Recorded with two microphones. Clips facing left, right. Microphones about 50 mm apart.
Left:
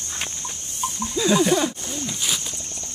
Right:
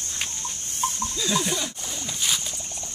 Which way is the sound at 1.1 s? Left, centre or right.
Left.